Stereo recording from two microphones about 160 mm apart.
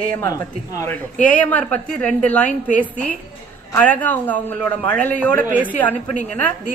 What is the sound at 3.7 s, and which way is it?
A man's voice, 10° left (ahead or behind).